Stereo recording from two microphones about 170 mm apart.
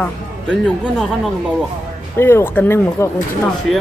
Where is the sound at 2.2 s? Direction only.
15° left (ahead or behind).